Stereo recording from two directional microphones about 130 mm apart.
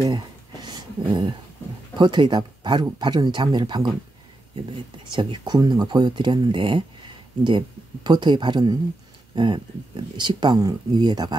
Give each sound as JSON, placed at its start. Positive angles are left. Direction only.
{"t": 0.0, "sound": "a sound", "side_deg": -35}
{"t": 2.0, "sound": "speech", "side_deg": -35}
{"t": 5.1, "sound": "speech", "side_deg": -35}